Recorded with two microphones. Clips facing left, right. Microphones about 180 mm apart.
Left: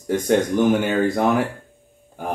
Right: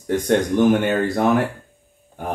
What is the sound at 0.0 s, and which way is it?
Speech, centre (ahead or behind).